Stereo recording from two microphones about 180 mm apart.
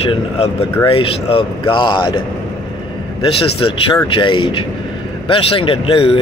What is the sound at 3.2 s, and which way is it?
Speech, 30° left (ahead or behind).